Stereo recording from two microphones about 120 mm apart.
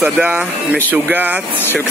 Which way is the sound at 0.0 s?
10° right (ahead or behind).